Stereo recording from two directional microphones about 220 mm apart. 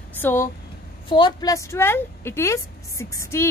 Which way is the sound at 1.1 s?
20° left (ahead or behind).